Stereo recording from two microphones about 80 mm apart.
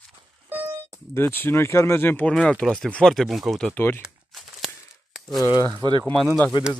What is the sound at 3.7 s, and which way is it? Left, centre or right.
Speech, left.